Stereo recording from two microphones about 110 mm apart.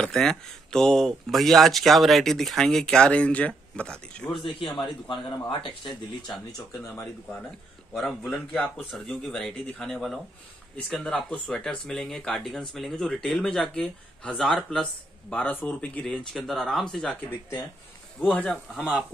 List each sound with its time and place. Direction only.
0.0 s speech: 5° left (ahead or behind)
4.4 s speech: 50° left (ahead or behind)
7.9 s speech: 5° left (ahead or behind)
18.8 s speech: 5° right (ahead or behind)